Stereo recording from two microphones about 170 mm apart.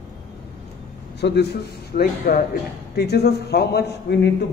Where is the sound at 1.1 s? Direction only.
80° left.